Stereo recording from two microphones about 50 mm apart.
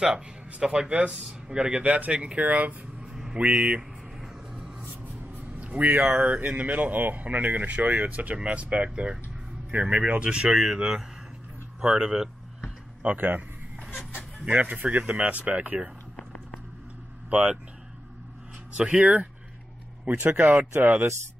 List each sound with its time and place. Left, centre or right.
0.0 s a man's voice: centre
3.0 s a sound: centre
3.3 s speech: right
4.2 s vehicle: centre
4.7 s a man's voice: right; by 12.3 s centre
13.2 s a sound: right
14.4 s speech: right
17.3 s speech: right
18.8 s speech: right
20.1 s speech: right